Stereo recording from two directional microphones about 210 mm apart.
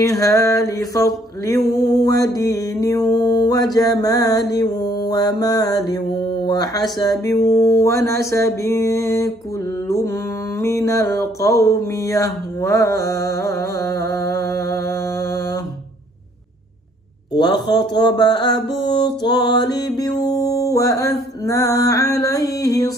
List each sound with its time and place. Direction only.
0.0 s mantra: 15° left (ahead or behind)
10.6 s a sound: 15° left (ahead or behind)
17.3 s mantra: 20° left (ahead or behind)